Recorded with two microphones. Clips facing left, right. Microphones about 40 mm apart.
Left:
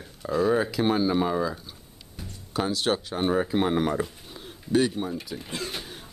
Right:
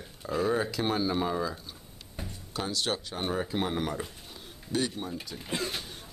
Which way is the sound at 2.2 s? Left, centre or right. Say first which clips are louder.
Right 1 dB; right.